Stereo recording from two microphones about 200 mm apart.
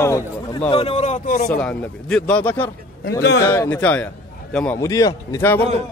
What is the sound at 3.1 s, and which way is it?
Speech, 55° left (ahead or behind).